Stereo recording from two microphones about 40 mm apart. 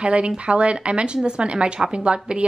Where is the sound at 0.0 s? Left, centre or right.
Right.